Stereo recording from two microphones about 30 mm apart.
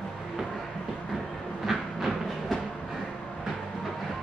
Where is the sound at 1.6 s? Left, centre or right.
Centre.